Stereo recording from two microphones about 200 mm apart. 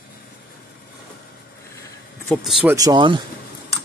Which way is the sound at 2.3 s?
Centre (ahead or behind).